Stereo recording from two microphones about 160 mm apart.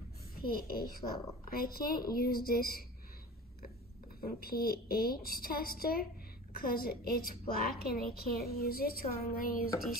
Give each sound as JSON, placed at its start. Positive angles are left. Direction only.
{"t": 0.4, "sound": "a woman's voice", "side_deg": 70}
{"t": 4.2, "sound": "a woman's voice", "side_deg": 70}